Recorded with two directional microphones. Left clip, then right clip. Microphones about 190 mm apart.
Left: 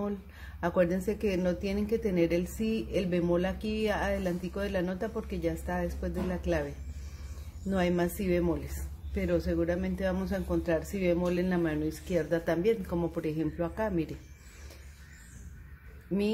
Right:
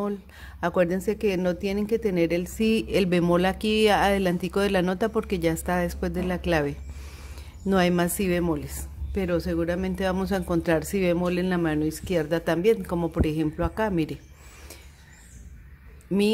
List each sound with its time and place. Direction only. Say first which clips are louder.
0.6 s a woman's voice: right 4 dB; 35° right (ahead or behind)
7.7 s a woman's voice: right 7 dB; 35° right (ahead or behind)